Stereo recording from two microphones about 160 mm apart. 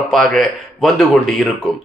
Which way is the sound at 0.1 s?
Centre (ahead or behind).